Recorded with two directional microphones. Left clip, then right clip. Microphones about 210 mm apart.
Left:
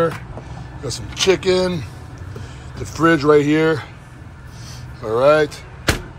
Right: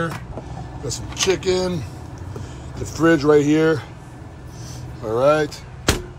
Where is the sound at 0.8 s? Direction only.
10° right (ahead or behind).